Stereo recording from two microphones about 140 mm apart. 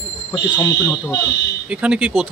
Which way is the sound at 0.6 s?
25° left (ahead or behind).